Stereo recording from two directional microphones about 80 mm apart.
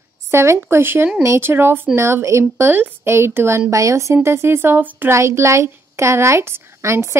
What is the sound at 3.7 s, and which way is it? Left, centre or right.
Speech, right.